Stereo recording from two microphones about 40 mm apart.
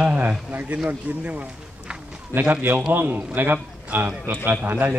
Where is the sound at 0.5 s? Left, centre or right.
Right.